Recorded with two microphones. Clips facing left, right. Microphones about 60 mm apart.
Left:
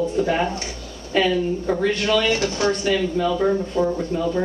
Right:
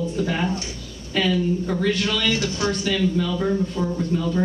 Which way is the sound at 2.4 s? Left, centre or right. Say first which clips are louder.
Left 2 dB; left.